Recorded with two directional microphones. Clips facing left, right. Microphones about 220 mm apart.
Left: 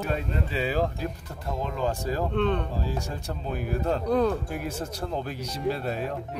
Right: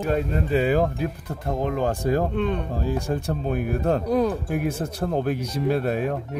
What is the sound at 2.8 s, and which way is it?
Speech, 55° right (ahead or behind).